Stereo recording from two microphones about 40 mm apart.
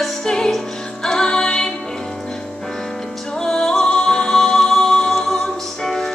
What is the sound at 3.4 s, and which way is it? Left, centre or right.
Music, centre.